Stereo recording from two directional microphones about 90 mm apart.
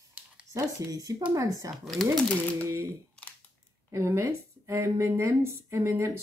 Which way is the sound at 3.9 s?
35° right (ahead or behind).